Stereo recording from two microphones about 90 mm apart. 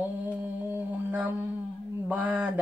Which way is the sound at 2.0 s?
20° right (ahead or behind).